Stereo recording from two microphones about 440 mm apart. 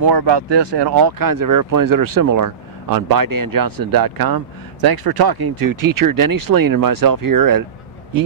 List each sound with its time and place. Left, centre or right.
0.0 s speech: right